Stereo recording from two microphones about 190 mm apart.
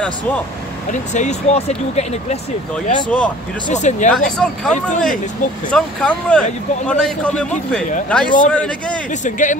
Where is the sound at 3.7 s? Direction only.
40° left (ahead or behind).